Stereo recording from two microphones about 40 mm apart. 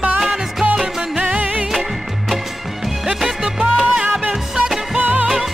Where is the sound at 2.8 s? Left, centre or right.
Centre.